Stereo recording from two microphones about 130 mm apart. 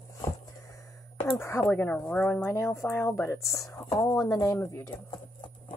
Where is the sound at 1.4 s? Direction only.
15° left (ahead or behind).